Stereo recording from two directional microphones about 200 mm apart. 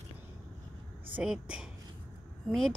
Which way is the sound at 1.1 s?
5° right (ahead or behind).